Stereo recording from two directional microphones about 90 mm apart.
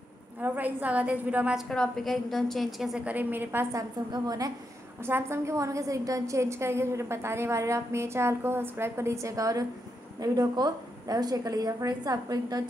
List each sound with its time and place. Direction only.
0.4 s a woman's voice: 20° right (ahead or behind)
1.7 s a woman's voice: 5° left (ahead or behind)
3.1 s a woman's voice: 20° right (ahead or behind)
3.7 s a woman's voice: 45° right (ahead or behind)
5.0 s a woman's voice: 30° right (ahead or behind); by 12.6 s 45° right (ahead or behind)